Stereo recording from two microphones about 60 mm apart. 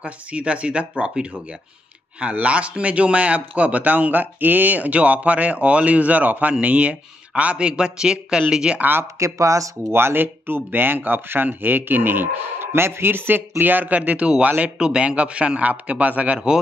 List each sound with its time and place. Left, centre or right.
0.0 s a man's voice: centre
9.0 s speech: right
9.8 s a man's voice: right